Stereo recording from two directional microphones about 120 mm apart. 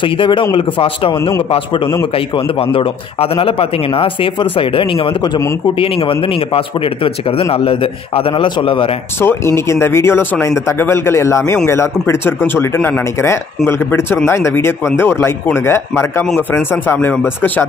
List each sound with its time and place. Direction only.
0.0 s a man's voice: 45° left (ahead or behind)
9.2 s a man's voice: 20° left (ahead or behind)